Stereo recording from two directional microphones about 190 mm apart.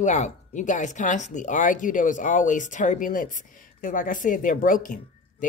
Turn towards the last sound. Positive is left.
turn(degrees=45)  # may be behind; listen again after turning